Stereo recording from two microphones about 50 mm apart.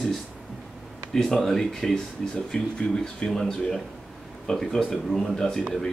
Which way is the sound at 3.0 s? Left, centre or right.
Centre.